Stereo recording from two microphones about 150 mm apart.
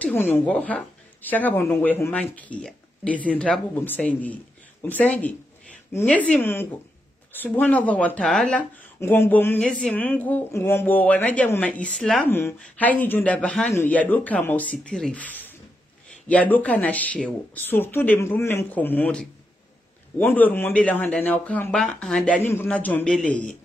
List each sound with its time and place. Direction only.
0.0 s a woman's voice: 15° left (ahead or behind)
9.0 s a woman's voice: 15° left (ahead or behind)